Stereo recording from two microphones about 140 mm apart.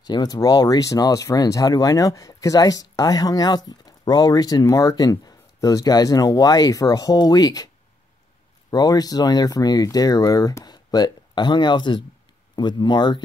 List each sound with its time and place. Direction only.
0.0 s speech: 30° left (ahead or behind)